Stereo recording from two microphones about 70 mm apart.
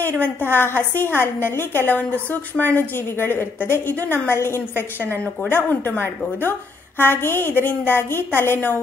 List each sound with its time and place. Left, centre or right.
0.5 s a woman's voice: left
4.3 s a woman's voice: left